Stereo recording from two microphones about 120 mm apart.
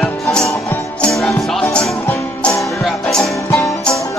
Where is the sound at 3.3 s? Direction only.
25° left (ahead or behind).